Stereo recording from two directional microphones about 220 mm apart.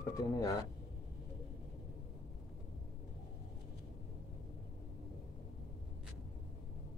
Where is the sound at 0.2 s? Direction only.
15° left (ahead or behind).